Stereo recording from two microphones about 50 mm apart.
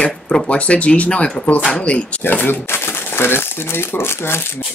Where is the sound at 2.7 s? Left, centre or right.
Left.